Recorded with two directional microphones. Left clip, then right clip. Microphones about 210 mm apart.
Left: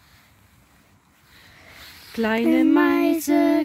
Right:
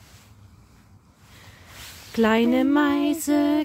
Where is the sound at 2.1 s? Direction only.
5° right (ahead or behind).